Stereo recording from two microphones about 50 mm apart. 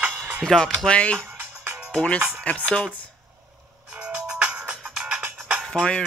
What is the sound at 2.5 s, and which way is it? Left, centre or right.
Speech, left.